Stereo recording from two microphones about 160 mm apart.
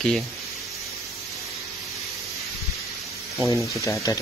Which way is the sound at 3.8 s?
20° left (ahead or behind).